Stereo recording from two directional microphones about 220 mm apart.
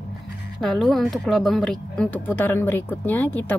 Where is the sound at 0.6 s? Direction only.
Centre (ahead or behind).